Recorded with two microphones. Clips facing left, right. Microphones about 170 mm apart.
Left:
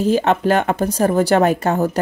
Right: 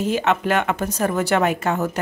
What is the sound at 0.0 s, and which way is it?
Speech, 35° left (ahead or behind).